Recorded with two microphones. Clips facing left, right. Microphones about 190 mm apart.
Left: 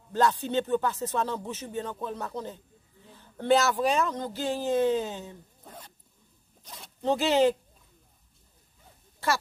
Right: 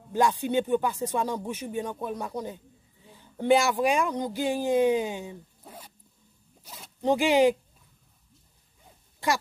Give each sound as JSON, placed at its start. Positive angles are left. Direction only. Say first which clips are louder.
{"t": 0.1, "sound": "speech", "louder": "right 1 dB", "side_deg": -10}
{"t": 6.6, "sound": "zipper", "louder": "even", "side_deg": -5}
{"t": 7.0, "sound": "speech", "louder": "right 2 dB", "side_deg": -15}
{"t": 9.2, "sound": "speech", "louder": "right 1 dB", "side_deg": -15}